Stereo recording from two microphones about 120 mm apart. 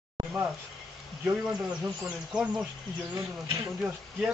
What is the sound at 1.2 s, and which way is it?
Speech, 10° right (ahead or behind).